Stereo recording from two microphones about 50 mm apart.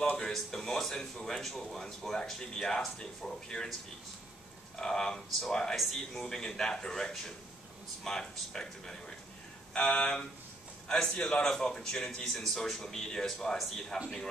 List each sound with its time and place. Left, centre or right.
0.1 s speech: centre
4.7 s speech: centre
9.8 s a sound: left
10.9 s speech: centre
12.4 s speech: centre